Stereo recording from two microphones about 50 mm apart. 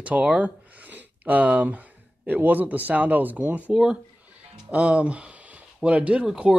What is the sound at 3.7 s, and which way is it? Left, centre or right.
Speech, centre.